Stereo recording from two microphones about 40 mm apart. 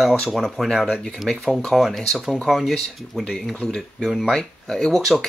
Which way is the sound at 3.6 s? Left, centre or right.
Centre.